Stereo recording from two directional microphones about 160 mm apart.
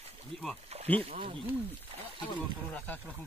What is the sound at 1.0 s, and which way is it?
Speech, 35° right (ahead or behind).